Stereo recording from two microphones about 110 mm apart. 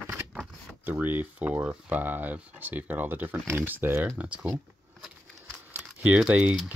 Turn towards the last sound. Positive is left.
turn(degrees=-10)  # may be behind; listen again after turning